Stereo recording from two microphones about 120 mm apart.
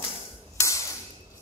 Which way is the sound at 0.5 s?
25° left (ahead or behind).